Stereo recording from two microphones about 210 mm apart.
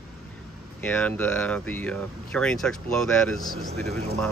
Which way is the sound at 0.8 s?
5° left (ahead or behind).